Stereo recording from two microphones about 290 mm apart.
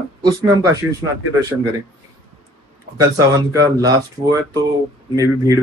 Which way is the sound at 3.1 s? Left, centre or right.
Centre.